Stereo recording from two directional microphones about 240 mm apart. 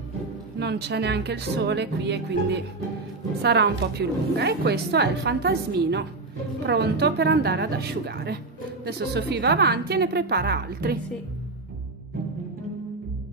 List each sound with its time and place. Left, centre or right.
0.6 s a woman's voice: right